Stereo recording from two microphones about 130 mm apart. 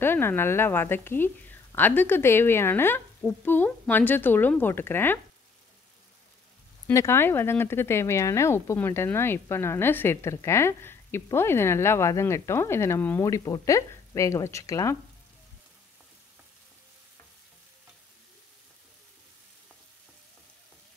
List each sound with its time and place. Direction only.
0.0 s a woman's voice: 15° left (ahead or behind)
6.9 s speech: 20° left (ahead or behind)